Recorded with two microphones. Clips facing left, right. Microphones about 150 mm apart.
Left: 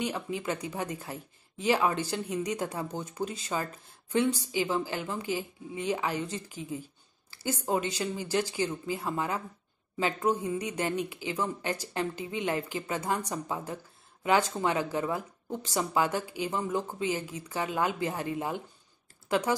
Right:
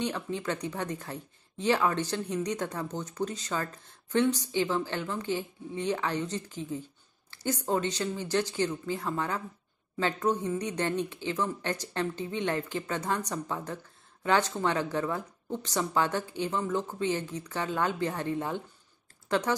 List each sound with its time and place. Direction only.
0.0 s speech: 10° left (ahead or behind)